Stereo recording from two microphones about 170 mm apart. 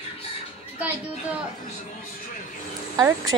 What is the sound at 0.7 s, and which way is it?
Speech, 10° right (ahead or behind).